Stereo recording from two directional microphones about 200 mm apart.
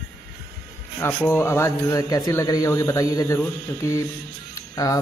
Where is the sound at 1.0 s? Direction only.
10° left (ahead or behind).